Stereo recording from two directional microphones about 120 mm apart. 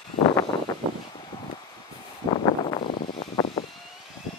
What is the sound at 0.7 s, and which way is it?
Vehicle, 25° left (ahead or behind).